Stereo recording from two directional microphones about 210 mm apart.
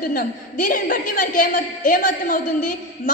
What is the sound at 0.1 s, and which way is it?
A woman's voice, 40° left (ahead or behind).